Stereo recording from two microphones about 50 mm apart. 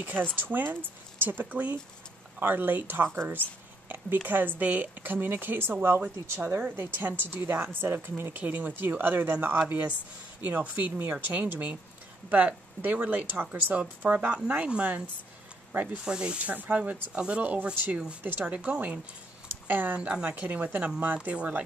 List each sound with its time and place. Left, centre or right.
0.0 s speech: right
6.8 s speech: right
8.3 s speech: right
12.3 s speech: right
13.7 s speech: right
16.0 s speech: centre
16.5 s speech: right
18.2 s speech: right
19.4 s a sound: right
20.0 s speech: centre
20.2 s speech: right